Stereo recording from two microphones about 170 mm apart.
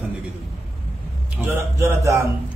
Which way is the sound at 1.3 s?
10° right (ahead or behind).